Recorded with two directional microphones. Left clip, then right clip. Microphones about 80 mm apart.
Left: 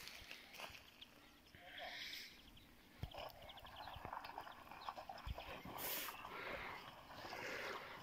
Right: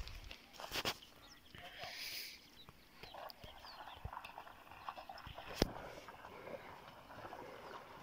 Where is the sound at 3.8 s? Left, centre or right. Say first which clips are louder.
Left 1 dB; centre.